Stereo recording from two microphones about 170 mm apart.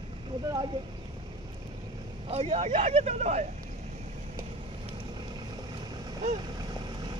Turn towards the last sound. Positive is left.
turn(degrees=-25)  # may be behind; listen again after turning